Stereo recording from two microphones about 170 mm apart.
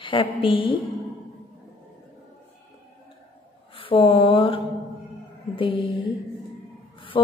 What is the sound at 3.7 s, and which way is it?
Mantra, 30° left (ahead or behind).